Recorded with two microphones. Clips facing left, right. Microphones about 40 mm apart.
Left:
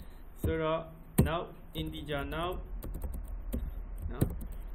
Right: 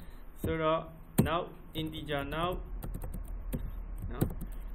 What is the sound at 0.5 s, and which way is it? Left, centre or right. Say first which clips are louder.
A man's voice: right 2 dB; centre.